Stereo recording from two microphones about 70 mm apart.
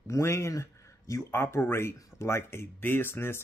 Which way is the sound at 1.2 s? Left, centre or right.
Left.